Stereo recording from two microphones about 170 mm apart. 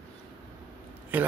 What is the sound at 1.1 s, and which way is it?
Speech, 10° right (ahead or behind).